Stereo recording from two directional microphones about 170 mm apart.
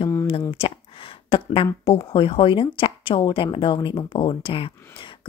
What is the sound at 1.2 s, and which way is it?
Speech, 30° left (ahead or behind).